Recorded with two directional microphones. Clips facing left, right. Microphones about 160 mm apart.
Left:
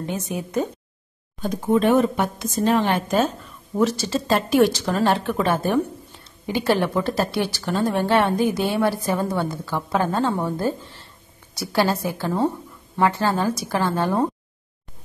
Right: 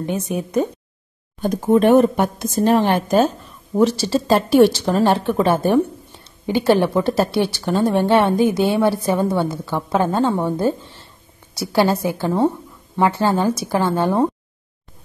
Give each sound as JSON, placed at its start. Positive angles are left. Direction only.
{"t": 0.0, "sound": "speech", "side_deg": -20}
{"t": 1.4, "sound": "speech", "side_deg": -50}
{"t": 3.7, "sound": "a woman's voice", "side_deg": -30}
{"t": 11.6, "sound": "a woman's voice", "side_deg": -25}